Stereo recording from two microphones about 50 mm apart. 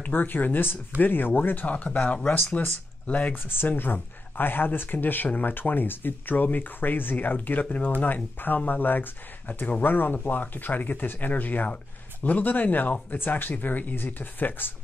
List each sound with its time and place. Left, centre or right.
0.0 s speech: left
3.3 s speech: left